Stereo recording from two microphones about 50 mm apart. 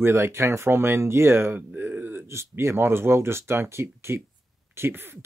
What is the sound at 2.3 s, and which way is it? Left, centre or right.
Speech, right.